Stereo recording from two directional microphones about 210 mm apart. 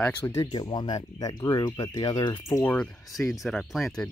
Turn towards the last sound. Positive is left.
turn(degrees=0)  # may be behind; listen again after turning